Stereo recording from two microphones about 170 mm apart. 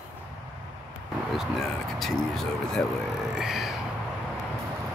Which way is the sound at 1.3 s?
Centre (ahead or behind).